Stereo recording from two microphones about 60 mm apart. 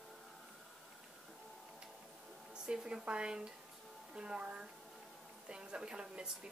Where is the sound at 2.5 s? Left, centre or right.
Centre.